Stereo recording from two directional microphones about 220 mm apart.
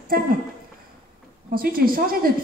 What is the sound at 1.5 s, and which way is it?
Speech, 40° right (ahead or behind).